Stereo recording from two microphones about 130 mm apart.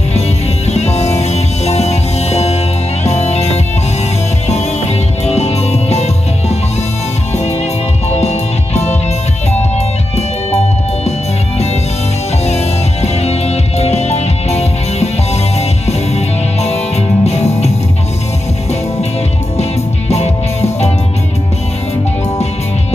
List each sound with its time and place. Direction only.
0.7 s music: 55° left (ahead or behind)
5.2 s music: 55° left (ahead or behind)
8.1 s music: 55° left (ahead or behind)
12.4 s music: 55° left (ahead or behind)